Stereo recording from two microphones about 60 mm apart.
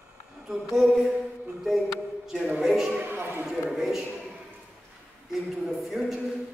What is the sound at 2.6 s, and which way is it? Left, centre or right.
Music, centre.